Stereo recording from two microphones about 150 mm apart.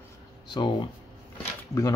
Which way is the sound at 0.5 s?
30° left (ahead or behind).